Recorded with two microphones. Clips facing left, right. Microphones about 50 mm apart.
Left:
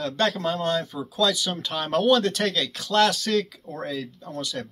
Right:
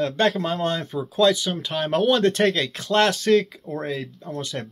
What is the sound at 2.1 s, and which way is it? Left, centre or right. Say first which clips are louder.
Speech: right 2 dB; right.